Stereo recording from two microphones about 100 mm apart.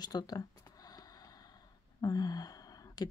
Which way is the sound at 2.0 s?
40° left (ahead or behind).